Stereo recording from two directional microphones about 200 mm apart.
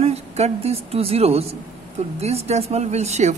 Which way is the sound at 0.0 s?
30° right (ahead or behind).